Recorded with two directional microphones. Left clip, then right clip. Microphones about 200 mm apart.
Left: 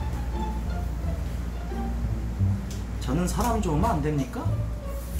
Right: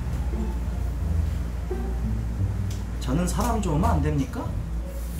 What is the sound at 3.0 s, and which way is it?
Speech, 10° right (ahead or behind).